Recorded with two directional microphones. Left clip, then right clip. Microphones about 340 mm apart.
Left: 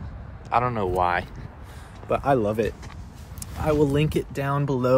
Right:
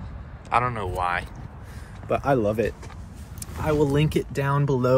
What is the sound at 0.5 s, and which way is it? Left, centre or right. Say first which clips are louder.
Speech: left 1 dB; centre.